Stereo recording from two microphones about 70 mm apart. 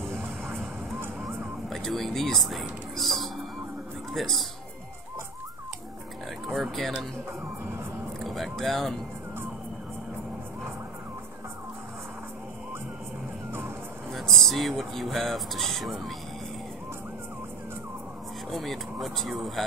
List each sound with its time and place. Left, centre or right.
0.0 s music: right
1.2 s music: centre
4.1 s a man's voice: centre
6.5 s speech: centre
8.2 s speech: centre
14.1 s speech: centre
18.5 s speech: centre